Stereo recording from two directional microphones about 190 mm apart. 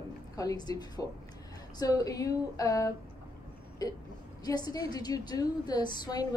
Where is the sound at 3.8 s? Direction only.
20° left (ahead or behind).